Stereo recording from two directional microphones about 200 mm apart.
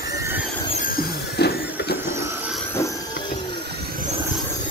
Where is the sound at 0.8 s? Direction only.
50° left (ahead or behind).